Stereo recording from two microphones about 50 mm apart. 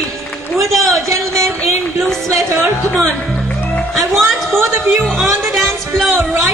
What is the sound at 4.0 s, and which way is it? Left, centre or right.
A woman's voice, centre.